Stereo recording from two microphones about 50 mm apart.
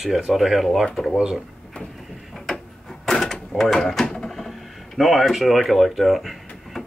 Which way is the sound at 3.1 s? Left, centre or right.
Centre.